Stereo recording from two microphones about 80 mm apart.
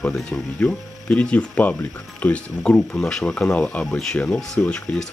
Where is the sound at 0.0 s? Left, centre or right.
Centre.